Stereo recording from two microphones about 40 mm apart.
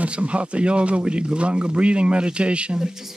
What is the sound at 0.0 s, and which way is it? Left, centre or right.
Speech, right.